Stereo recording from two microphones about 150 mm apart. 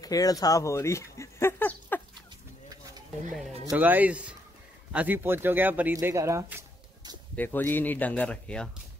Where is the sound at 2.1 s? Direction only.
30° right (ahead or behind).